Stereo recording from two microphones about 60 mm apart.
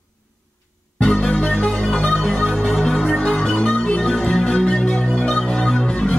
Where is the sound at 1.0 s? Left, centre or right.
Centre.